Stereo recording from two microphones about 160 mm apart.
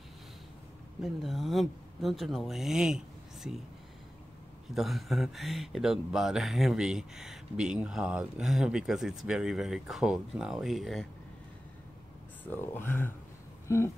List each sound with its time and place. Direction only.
1.0 s speech: centre (ahead or behind)
4.6 s speech: centre (ahead or behind)
12.4 s speech: 15° left (ahead or behind)